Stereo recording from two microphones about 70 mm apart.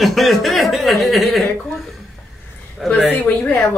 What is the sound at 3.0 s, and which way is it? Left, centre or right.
Speech, left.